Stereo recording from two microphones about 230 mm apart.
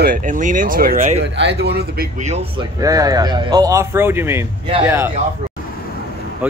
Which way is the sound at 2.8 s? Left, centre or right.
Centre.